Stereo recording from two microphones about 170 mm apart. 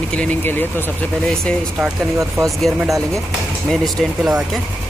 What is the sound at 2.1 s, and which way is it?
Speech, 20° right (ahead or behind).